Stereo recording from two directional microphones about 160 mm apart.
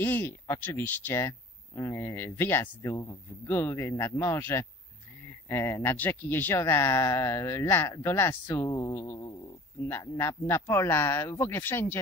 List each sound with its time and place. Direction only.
0.0 s speech: 10° left (ahead or behind)